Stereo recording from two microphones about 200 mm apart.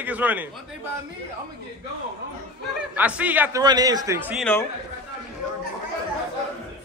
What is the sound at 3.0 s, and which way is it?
Speech, 5° right (ahead or behind).